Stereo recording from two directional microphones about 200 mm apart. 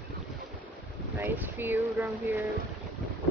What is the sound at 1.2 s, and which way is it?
Speech, 10° right (ahead or behind).